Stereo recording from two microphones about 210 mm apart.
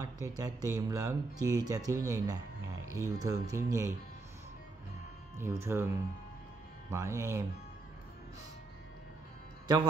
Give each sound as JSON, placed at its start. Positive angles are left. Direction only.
{"t": 0.0, "sound": "speech", "side_deg": -15}
{"t": 5.4, "sound": "speech", "side_deg": -10}